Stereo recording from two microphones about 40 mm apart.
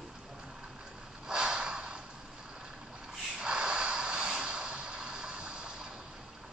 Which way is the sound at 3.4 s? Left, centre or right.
Right.